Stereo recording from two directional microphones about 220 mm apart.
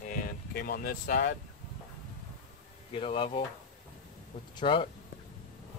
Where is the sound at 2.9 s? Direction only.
25° left (ahead or behind).